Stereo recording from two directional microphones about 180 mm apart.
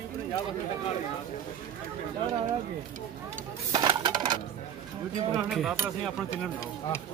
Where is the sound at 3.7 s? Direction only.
25° right (ahead or behind).